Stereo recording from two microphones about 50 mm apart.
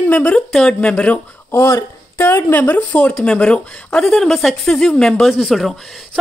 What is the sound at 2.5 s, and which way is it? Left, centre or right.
Speech, left.